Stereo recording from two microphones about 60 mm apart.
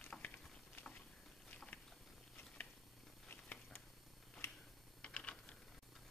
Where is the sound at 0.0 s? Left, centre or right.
Left.